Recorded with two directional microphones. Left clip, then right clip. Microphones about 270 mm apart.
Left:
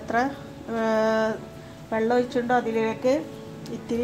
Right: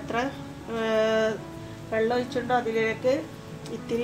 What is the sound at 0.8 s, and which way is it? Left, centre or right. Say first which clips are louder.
A woman's voice: left 1 dB; left.